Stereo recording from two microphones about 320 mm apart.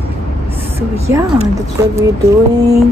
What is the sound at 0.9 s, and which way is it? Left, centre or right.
Speech, centre.